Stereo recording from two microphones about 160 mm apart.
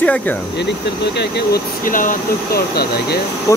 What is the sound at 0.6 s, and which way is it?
Speech, 90° left.